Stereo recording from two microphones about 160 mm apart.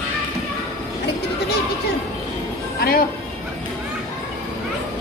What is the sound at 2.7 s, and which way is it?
Speech, 70° left (ahead or behind).